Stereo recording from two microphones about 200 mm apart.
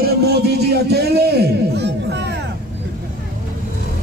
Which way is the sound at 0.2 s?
55° right (ahead or behind).